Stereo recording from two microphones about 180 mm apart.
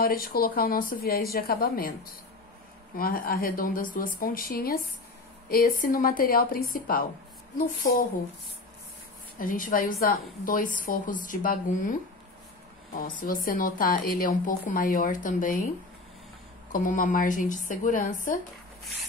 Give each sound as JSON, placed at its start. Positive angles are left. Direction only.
{"t": 0.0, "sound": "speech", "side_deg": 55}
{"t": 3.0, "sound": "a woman's voice", "side_deg": 55}
{"t": 9.4, "sound": "a woman's voice", "side_deg": 50}
{"t": 13.2, "sound": "a woman's voice", "side_deg": 50}
{"t": 16.7, "sound": "a woman's voice", "side_deg": 50}